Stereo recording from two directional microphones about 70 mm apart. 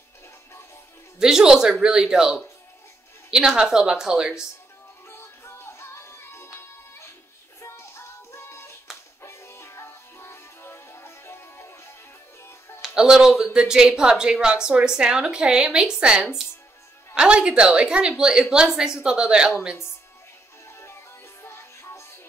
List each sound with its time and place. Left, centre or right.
1.2 s a woman's voice: centre
5.1 s music: left
12.8 s a woman's voice: centre
21.4 s music: left